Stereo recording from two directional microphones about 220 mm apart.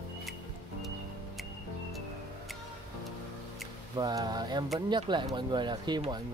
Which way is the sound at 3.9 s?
20° right (ahead or behind).